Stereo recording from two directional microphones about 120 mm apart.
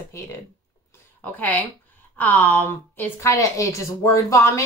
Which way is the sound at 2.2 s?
15° left (ahead or behind).